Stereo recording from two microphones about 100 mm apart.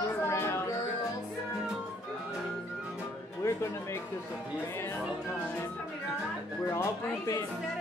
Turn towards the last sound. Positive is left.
turn(degrees=30)  # may be behind; listen again after turning